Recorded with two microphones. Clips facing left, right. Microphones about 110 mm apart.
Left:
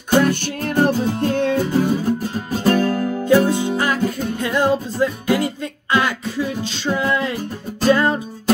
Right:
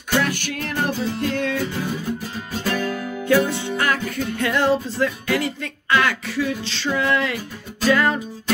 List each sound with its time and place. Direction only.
0.1 s music: 40° left (ahead or behind)
3.4 s music: 15° left (ahead or behind)
7.1 s music: 25° left (ahead or behind)